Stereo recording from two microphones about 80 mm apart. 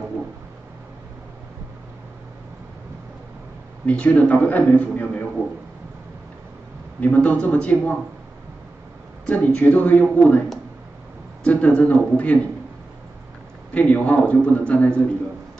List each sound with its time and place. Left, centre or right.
3.8 s a man's voice: centre
7.0 s speech: centre
9.2 s a man's voice: centre
11.4 s speech: centre
13.7 s speech: centre